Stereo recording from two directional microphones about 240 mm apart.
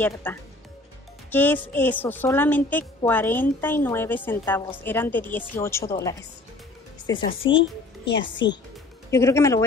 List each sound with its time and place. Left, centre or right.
0.0 s a woman's voice: centre
7.5 s a child's voice: left
9.1 s a woman's voice: centre